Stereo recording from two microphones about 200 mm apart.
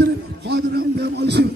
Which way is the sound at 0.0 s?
55° right (ahead or behind).